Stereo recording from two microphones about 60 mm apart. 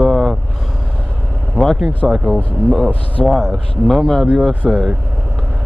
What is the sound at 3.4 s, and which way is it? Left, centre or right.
Speech, centre.